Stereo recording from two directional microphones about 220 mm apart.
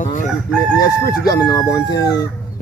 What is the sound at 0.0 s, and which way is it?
Crowing, 35° left (ahead or behind).